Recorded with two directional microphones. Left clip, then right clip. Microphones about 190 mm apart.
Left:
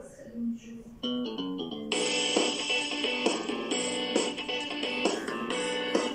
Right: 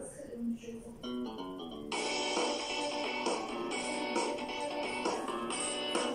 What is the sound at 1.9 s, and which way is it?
Music, 40° left (ahead or behind).